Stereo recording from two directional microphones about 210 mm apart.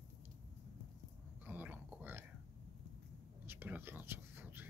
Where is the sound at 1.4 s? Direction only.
10° right (ahead or behind).